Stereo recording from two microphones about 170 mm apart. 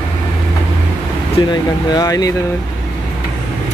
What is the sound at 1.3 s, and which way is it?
Speech, 25° left (ahead or behind).